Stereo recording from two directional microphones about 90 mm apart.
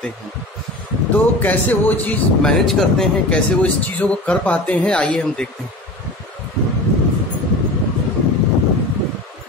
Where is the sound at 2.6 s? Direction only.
Centre (ahead or behind).